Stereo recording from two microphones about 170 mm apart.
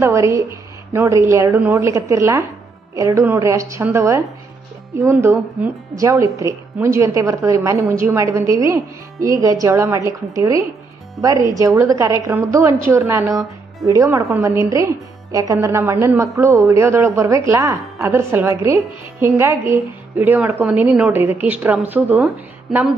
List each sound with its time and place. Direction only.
0.0 s a woman's voice: 20° right (ahead or behind)